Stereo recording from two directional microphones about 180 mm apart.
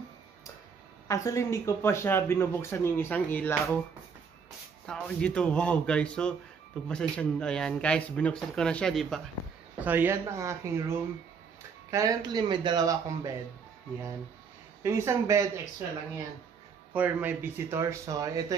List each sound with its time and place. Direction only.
1.0 s speech: 15° left (ahead or behind)
4.8 s speech: 5° left (ahead or behind)
9.8 s speech: 10° right (ahead or behind)
14.8 s speech: 15° right (ahead or behind)
16.9 s speech: 10° right (ahead or behind)